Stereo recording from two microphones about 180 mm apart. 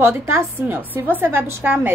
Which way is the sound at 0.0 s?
15° right (ahead or behind).